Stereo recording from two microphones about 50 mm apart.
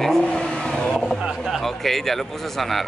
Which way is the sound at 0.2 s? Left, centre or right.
Centre.